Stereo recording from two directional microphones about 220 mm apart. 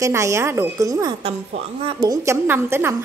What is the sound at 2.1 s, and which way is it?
Speech, 10° right (ahead or behind).